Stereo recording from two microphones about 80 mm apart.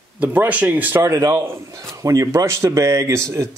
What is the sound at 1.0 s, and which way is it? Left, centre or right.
A man's voice, right.